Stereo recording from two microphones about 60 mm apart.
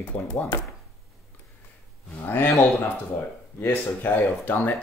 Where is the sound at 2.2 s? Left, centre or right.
Left.